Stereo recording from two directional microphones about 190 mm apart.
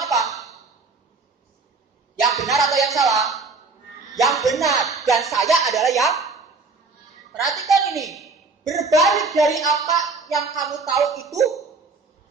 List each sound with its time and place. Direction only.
0.0 s a sound: centre (ahead or behind)
2.3 s music: centre (ahead or behind)
5.0 s a woman's voice: centre (ahead or behind)
11.1 s a woman's voice: 15° right (ahead or behind)